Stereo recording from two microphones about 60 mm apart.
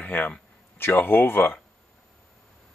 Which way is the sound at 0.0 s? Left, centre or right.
Left.